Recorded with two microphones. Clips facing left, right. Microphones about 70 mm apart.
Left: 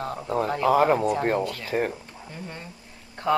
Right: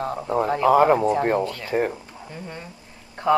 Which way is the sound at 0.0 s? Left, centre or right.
Centre.